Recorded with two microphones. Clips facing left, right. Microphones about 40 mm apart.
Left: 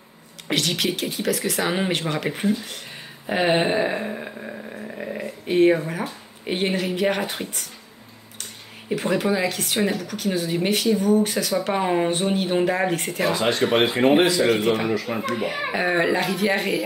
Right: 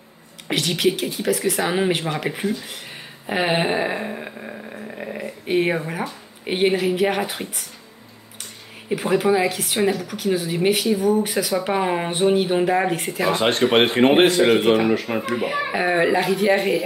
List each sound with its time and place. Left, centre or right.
0.5 s speech: centre
8.8 s speech: centre
13.3 s speech: right
14.6 s a man's voice: right
14.9 s speech: right
15.2 s speech: centre